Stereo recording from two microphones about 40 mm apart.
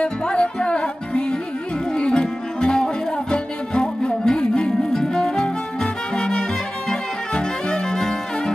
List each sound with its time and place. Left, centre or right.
0.0 s music: left